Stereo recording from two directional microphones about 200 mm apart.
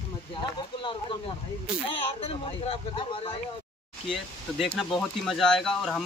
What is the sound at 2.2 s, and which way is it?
Speech, 30° left (ahead or behind).